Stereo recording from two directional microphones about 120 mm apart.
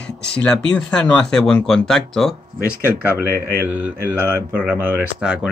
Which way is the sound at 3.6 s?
15° right (ahead or behind).